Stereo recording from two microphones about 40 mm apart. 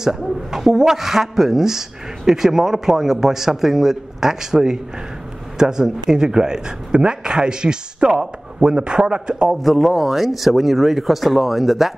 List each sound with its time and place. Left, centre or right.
0.0 s a woman's voice: centre
9.6 s speech: centre